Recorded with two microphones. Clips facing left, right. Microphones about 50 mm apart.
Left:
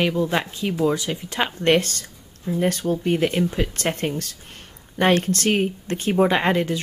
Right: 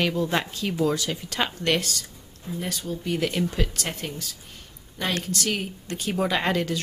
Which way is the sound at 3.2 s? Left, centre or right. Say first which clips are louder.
Left 4 dB; left.